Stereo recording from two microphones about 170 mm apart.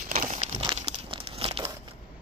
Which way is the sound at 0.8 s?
30° right (ahead or behind).